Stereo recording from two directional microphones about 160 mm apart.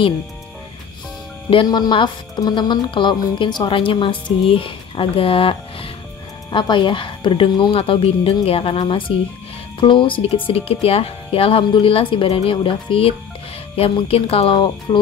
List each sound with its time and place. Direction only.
1.5 s a woman's voice: 30° left (ahead or behind)